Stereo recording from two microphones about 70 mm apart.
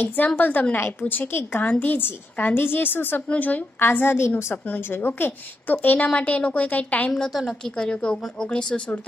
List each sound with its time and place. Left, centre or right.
0.0 s a woman's voice: left
7.2 s a woman's voice: centre